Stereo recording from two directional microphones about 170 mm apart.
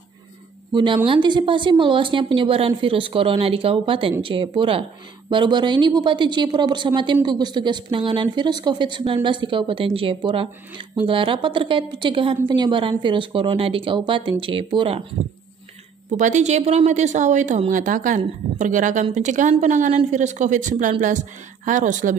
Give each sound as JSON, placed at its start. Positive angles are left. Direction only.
{"t": 1.0, "sound": "a woman's voice", "side_deg": -30}
{"t": 16.1, "sound": "a woman's voice", "side_deg": -45}